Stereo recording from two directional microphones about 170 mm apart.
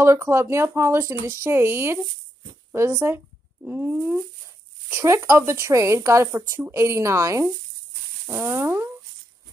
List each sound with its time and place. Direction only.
0.0 s speech: 15° right (ahead or behind)